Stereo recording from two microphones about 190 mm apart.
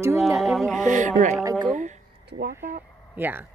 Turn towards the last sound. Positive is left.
turn(degrees=-10)  # may be behind; listen again after turning